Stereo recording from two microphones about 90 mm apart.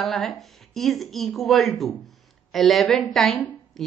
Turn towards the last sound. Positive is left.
turn(degrees=0)  # may be behind; listen again after turning